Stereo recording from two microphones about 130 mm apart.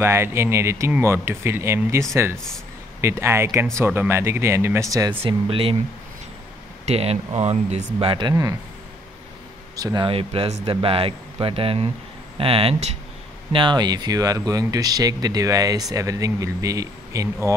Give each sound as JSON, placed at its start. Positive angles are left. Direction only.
{"t": 0.0, "sound": "speech", "side_deg": -20}
{"t": 5.2, "sound": "speech", "side_deg": -45}
{"t": 6.9, "sound": "speech", "side_deg": -55}
{"t": 9.8, "sound": "speech", "side_deg": -30}
{"t": 10.0, "sound": "speech", "side_deg": -45}